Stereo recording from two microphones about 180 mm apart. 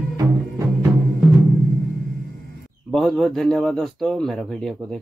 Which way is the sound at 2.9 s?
Centre (ahead or behind).